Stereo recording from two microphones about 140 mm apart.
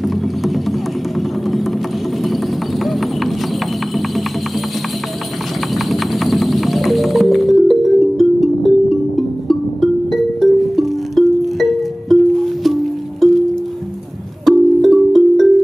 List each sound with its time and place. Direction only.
0.0 s music: centre (ahead or behind)
2.8 s clip-clop: centre (ahead or behind)
5.9 s music: centre (ahead or behind)
14.4 s music: centre (ahead or behind)